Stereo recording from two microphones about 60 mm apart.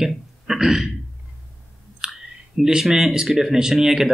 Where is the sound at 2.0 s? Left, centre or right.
Centre.